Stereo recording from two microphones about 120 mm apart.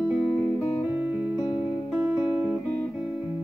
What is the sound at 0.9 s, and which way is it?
Music, 10° right (ahead or behind).